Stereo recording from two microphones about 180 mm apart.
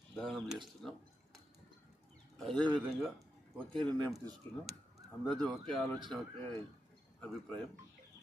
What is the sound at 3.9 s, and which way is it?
Speech, 20° right (ahead or behind).